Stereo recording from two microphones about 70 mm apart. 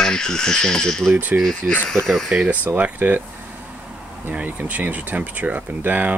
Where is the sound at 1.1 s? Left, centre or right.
Right.